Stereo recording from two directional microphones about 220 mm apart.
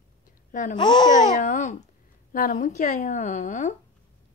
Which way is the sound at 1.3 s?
35° left (ahead or behind).